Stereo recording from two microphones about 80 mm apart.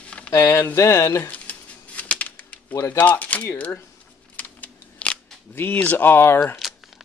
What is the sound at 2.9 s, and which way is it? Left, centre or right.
Speech, left.